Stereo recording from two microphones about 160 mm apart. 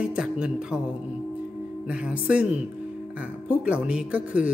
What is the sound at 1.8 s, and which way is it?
A woman's voice, 5° right (ahead or behind).